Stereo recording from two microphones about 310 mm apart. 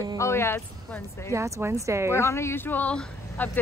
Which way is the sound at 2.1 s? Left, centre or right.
Centre.